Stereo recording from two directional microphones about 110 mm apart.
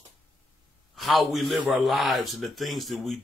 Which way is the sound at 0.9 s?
Centre (ahead or behind).